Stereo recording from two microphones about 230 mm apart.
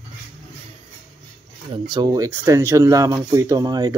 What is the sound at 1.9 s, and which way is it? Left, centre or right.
Speech, centre.